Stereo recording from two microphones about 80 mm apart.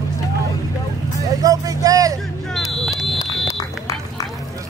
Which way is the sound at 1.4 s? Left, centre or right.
Right.